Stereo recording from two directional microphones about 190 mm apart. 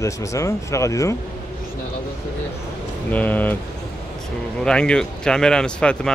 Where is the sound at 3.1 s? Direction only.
10° left (ahead or behind).